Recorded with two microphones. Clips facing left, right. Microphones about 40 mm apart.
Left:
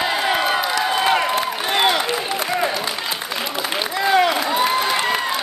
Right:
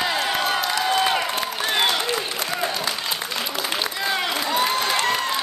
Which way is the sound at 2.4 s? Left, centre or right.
Centre.